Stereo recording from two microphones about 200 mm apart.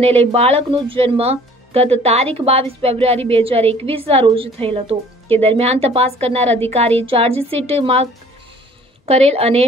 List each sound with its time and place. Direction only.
0.0 s a woman's voice: 30° right (ahead or behind)